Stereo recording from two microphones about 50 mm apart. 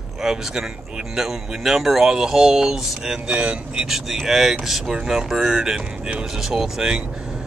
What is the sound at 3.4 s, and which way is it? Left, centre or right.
Speech, right.